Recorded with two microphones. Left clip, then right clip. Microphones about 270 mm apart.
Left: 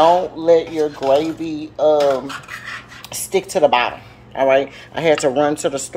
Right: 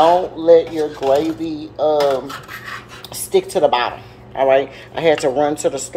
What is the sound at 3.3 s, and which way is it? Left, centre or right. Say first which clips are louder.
Speech: even; left.